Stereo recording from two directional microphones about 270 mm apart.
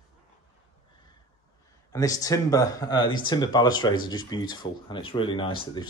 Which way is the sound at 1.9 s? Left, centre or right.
Centre.